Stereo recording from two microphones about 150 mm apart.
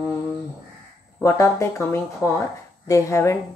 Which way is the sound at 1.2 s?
20° left (ahead or behind).